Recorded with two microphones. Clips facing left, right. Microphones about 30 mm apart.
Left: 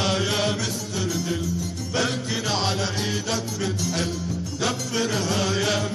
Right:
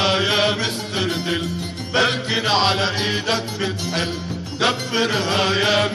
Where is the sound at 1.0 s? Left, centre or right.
Right.